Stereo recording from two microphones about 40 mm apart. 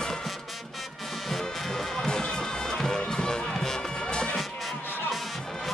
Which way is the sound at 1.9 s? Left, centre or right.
Centre.